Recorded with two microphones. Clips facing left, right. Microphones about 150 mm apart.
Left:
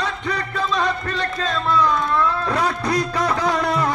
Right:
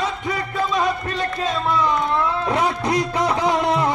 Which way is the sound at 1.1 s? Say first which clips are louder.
Right 1 dB; 20° right (ahead or behind).